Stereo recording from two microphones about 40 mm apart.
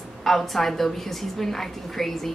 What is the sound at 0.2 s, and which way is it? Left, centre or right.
A woman's voice, centre.